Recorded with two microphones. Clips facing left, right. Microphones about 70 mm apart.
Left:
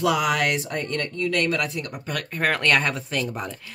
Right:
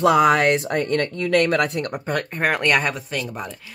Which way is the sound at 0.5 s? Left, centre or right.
Right.